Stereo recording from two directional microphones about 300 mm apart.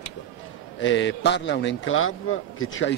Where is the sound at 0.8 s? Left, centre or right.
Left.